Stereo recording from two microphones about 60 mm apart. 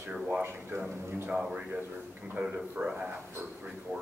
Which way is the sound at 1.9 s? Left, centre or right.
Right.